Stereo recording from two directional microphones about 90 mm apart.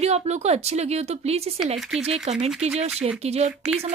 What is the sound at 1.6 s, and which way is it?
Speech, 5° right (ahead or behind).